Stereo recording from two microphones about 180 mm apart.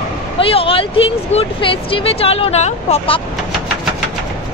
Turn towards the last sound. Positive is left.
turn(degrees=35)  # may be behind; listen again after turning